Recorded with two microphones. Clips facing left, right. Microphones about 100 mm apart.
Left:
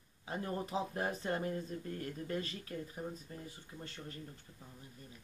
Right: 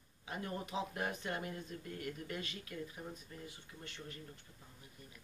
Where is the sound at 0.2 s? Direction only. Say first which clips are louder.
Left 3 dB; 30° left (ahead or behind).